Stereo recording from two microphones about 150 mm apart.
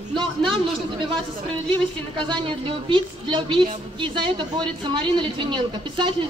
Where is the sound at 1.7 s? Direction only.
30° right (ahead or behind).